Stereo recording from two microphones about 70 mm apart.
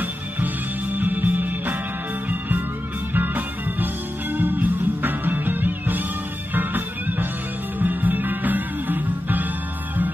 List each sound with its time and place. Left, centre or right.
0.9 s music: right
3.2 s music: right